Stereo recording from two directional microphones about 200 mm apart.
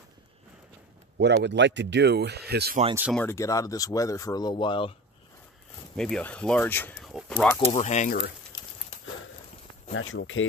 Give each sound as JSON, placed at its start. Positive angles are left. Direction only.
{"t": 1.1, "sound": "speech", "side_deg": -60}
{"t": 3.1, "sound": "a man's voice", "side_deg": 10}
{"t": 5.9, "sound": "a man's voice", "side_deg": 5}
{"t": 7.0, "sound": "a sound", "side_deg": 0}
{"t": 7.7, "sound": "speech", "side_deg": 35}
{"t": 9.9, "sound": "speech", "side_deg": 75}